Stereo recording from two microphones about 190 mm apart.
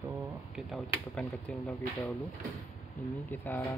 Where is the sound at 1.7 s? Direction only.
15° left (ahead or behind).